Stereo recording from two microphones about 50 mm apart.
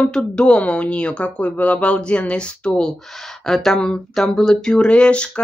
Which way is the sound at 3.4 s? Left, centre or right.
Centre.